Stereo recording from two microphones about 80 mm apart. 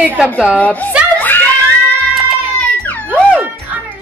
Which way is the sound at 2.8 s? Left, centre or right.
Centre.